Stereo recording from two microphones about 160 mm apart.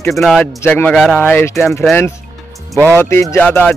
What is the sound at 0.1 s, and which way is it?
Speech, centre (ahead or behind).